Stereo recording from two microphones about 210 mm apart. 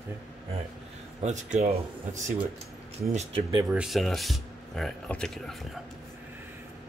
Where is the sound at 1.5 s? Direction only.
30° right (ahead or behind).